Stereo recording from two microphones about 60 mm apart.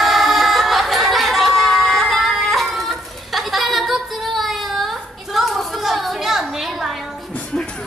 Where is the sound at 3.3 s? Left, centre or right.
Centre.